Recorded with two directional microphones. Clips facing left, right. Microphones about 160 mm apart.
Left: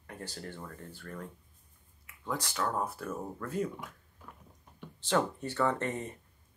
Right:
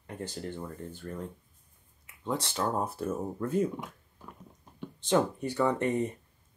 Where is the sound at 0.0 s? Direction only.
20° right (ahead or behind).